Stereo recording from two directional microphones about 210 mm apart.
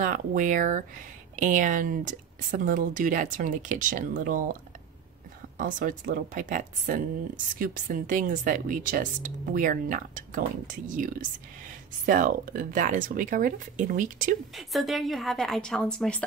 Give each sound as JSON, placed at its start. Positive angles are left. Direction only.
{"t": 0.0, "sound": "speech", "side_deg": -40}
{"t": 5.6, "sound": "speech", "side_deg": -40}
{"t": 14.5, "sound": "a woman's voice", "side_deg": 0}